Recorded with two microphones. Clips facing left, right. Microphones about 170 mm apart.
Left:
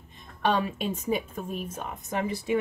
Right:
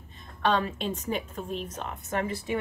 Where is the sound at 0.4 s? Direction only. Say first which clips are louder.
Even; 10° left (ahead or behind).